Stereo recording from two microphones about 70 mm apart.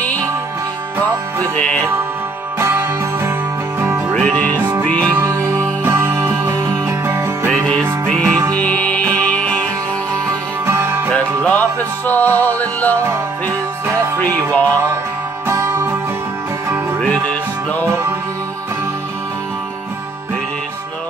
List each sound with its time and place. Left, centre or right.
1.4 s music: centre
2.6 s music: right
4.1 s music: centre
5.2 s music: right
8.0 s music: centre
10.6 s music: right
11.1 s music: centre
14.2 s music: left
15.4 s music: right
17.0 s music: centre
17.8 s music: right